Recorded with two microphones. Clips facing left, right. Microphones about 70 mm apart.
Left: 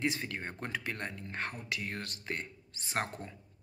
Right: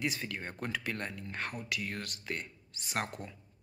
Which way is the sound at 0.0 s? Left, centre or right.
Left.